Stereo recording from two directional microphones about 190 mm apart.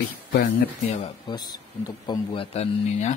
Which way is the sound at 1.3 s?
20° left (ahead or behind).